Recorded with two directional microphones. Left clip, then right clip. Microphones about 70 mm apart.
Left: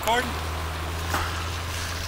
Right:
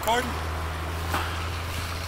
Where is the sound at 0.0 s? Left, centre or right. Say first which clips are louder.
Left 1 dB; centre.